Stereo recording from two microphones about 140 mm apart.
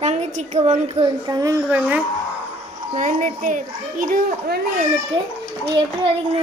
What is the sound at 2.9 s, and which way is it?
A child's voice, 65° right (ahead or behind).